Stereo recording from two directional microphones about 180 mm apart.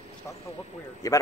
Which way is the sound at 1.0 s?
20° left (ahead or behind).